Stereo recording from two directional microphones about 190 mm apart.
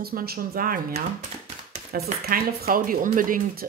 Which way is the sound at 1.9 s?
50° right (ahead or behind).